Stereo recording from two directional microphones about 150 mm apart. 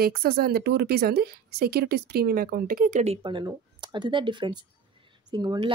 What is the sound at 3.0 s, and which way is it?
Speech, 35° right (ahead or behind).